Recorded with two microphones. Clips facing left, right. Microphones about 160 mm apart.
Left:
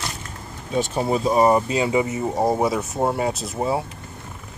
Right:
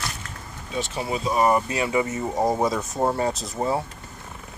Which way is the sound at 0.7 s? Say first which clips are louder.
Left 6 dB; 45° left (ahead or behind).